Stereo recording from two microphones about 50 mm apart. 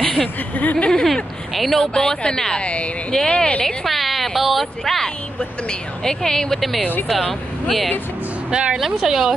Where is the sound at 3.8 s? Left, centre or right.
Centre.